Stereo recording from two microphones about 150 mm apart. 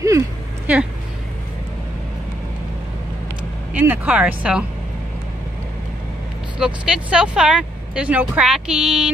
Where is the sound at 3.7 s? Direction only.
10° right (ahead or behind).